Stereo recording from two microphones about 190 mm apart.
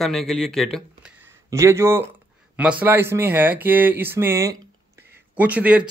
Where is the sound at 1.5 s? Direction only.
15° right (ahead or behind).